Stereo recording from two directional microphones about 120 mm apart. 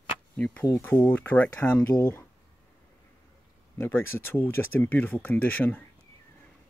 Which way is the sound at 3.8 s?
20° left (ahead or behind).